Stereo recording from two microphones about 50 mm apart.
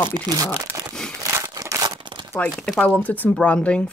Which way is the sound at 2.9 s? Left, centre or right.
Left.